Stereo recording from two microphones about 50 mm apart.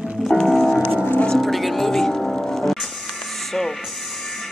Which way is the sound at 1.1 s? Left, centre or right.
Centre.